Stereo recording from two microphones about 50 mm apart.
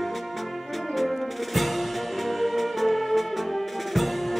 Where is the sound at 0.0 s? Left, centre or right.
Centre.